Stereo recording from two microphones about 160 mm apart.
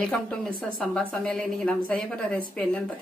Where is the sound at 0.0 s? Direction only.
5° left (ahead or behind).